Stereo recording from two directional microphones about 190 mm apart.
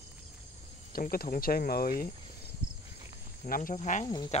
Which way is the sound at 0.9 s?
50° left (ahead or behind).